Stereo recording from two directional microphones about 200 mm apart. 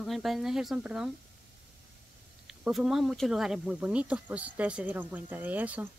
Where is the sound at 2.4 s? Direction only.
5° right (ahead or behind).